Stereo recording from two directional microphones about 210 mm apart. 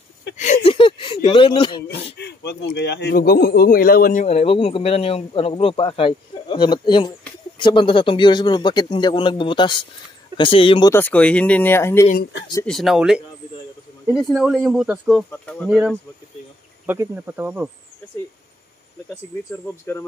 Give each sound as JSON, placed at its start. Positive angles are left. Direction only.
{"t": 0.4, "sound": "a sound", "side_deg": 30}
{"t": 2.1, "sound": "speech", "side_deg": 50}
{"t": 10.9, "sound": "speech", "side_deg": 10}
{"t": 12.1, "sound": "speech", "side_deg": 50}
{"t": 12.6, "sound": "speech", "side_deg": 0}
{"t": 16.8, "sound": "speech", "side_deg": -10}